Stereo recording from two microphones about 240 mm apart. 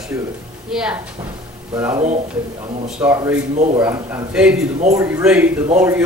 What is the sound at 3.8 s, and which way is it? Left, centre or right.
A man's voice, centre.